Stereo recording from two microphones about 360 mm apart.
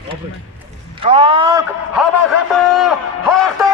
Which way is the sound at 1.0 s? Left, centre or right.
Centre.